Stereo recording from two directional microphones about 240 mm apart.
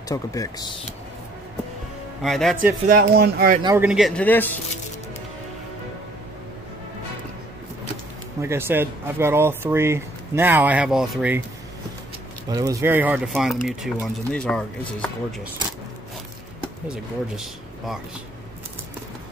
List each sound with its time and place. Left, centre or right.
0.1 s speech: centre
2.2 s speech: centre
2.9 s speech: right
3.6 s speech: centre
8.4 s speech: centre
12.4 s speech: centre
16.8 s speech: centre